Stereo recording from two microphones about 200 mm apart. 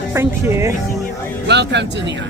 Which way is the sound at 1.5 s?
60° right (ahead or behind).